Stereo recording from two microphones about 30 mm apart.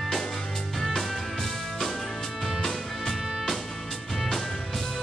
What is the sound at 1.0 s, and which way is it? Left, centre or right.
Music, centre.